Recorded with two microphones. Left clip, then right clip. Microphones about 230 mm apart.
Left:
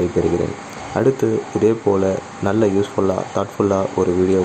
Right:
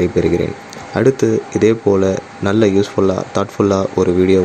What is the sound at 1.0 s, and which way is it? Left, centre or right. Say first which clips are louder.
Speech: right 4 dB; centre.